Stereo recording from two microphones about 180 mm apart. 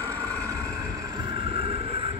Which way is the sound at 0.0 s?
15° right (ahead or behind).